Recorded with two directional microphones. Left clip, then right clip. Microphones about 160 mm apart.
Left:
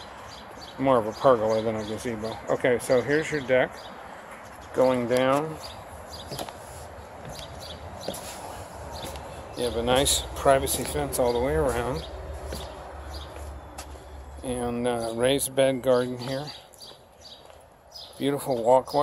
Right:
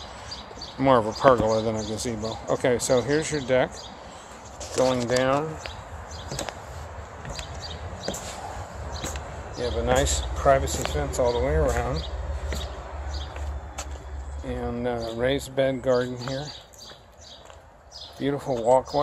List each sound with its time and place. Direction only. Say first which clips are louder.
0.7 s speech: right 2 dB; 10° right (ahead or behind)
2.5 s speech: even; 5° right (ahead or behind)
4.7 s speech: even; 10° left (ahead or behind)
9.6 s speech: even; 15° left (ahead or behind)
14.5 s speech: left 1 dB; 25° left (ahead or behind)
18.2 s speech: even; 10° left (ahead or behind)